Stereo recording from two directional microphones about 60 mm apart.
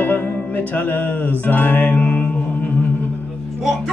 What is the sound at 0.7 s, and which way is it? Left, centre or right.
Speech, left.